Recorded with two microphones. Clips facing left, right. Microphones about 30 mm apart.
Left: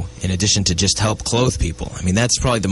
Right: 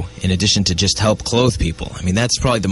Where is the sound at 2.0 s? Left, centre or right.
Centre.